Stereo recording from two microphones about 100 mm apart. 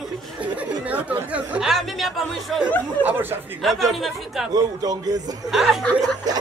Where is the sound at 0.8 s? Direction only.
15° right (ahead or behind); by 2.6 s centre (ahead or behind).